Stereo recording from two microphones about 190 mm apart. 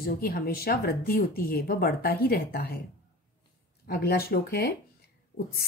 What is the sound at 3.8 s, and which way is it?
Speech, 55° left (ahead or behind).